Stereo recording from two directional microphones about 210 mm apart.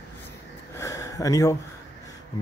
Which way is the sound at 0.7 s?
15° left (ahead or behind).